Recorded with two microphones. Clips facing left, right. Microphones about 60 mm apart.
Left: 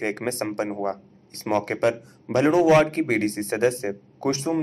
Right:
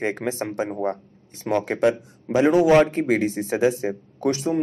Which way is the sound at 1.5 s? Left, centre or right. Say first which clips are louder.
Right 2 dB; centre.